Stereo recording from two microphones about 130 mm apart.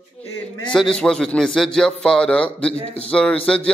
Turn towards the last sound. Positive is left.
turn(degrees=10)  # may be behind; listen again after turning